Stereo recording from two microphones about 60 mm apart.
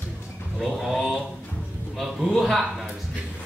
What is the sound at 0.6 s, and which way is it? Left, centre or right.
A man's voice, centre.